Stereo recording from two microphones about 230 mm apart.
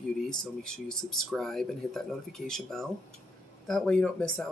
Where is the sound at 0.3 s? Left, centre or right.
Centre.